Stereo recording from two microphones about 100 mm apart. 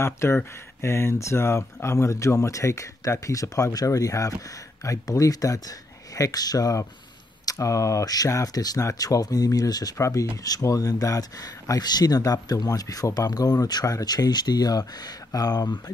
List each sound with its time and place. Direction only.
0.0 s speech: 25° left (ahead or behind); by 15.8 s 40° left (ahead or behind)